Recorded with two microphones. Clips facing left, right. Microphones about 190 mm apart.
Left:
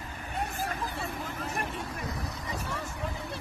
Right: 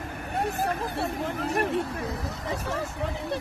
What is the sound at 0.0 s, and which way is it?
Vehicle, 65° right (ahead or behind).